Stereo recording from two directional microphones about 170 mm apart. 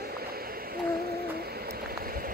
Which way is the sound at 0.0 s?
65° right (ahead or behind).